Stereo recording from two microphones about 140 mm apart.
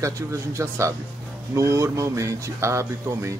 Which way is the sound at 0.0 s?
20° right (ahead or behind).